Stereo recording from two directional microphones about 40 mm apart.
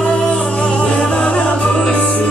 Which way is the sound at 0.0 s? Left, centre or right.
Left.